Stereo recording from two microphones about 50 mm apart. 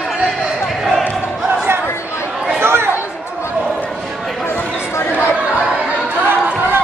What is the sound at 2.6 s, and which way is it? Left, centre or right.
Chatter, right.